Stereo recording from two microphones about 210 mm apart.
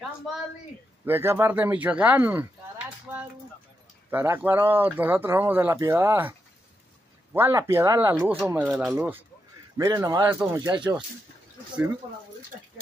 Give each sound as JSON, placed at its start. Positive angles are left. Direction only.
{"t": 1.0, "sound": "speech", "side_deg": -10}
{"t": 7.3, "sound": "speech", "side_deg": -10}